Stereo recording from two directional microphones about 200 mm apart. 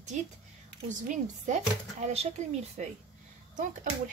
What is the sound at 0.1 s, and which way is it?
Speech, 35° right (ahead or behind).